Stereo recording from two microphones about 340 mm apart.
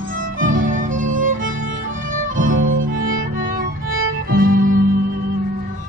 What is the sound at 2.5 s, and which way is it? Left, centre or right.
Music, right.